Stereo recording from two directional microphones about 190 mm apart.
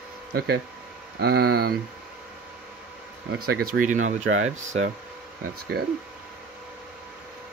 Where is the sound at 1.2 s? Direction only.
55° right (ahead or behind).